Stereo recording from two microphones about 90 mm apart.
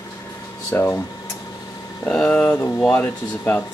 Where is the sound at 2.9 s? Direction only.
25° left (ahead or behind).